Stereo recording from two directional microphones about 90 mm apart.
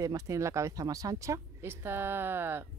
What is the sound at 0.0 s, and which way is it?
Speech, 40° right (ahead or behind).